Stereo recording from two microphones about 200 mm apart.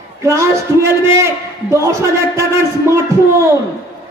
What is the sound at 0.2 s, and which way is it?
A man's voice, 15° right (ahead or behind).